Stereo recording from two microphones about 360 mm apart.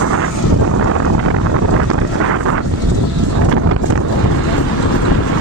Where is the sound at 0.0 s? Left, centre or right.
Right.